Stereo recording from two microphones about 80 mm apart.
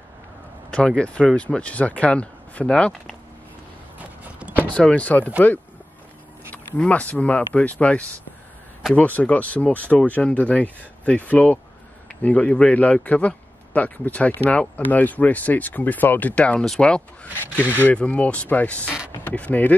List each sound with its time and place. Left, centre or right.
0.7 s speech: centre
4.6 s speech: centre
6.5 s a man's voice: centre